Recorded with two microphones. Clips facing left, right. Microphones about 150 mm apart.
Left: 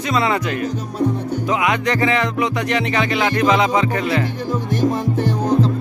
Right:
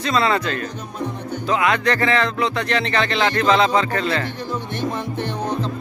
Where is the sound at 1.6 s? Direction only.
15° left (ahead or behind).